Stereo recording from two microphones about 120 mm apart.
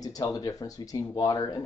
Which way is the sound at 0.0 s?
30° left (ahead or behind).